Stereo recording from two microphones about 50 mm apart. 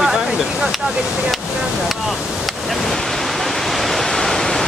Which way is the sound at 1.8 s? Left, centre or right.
Centre.